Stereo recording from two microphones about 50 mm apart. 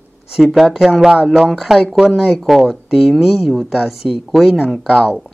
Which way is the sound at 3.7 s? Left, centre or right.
Centre.